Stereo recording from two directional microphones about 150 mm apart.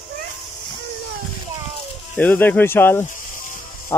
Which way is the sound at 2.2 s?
10° left (ahead or behind).